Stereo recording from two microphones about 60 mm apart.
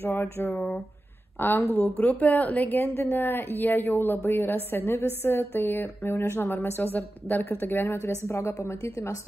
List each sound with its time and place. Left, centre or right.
0.1 s a woman's voice: left
2.8 s a woman's voice: left
8.3 s a woman's voice: left